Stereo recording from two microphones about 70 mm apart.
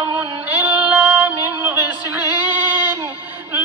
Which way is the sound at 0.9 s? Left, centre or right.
Right.